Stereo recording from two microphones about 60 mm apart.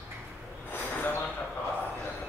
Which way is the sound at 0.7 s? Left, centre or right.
Left.